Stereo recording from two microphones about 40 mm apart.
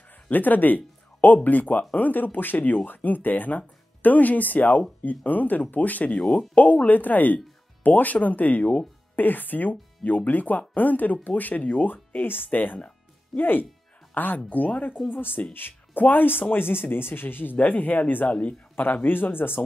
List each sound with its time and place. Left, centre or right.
0.3 s speech: left
17.6 s a man's voice: left
19.0 s speech: left